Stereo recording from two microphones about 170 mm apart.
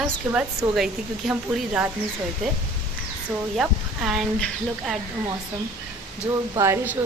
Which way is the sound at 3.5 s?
Centre (ahead or behind).